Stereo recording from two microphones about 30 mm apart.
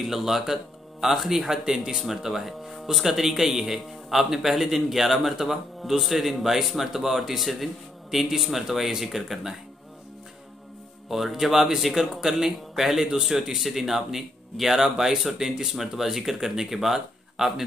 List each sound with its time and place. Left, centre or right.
0.0 s speech: centre
1.5 s speech: right
2.0 s speech: centre
11.1 s speech: centre